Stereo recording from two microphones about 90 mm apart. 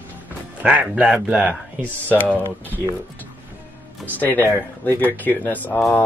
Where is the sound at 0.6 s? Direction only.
10° right (ahead or behind).